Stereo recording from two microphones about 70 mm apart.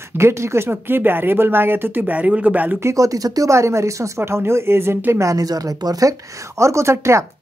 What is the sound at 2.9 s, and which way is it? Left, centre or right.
Speech, right.